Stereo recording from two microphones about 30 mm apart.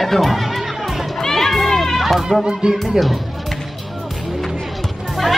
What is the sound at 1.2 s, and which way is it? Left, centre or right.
Run, centre.